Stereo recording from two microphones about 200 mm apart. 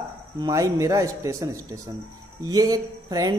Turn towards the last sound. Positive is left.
turn(degrees=-20)  # may be behind; listen again after turning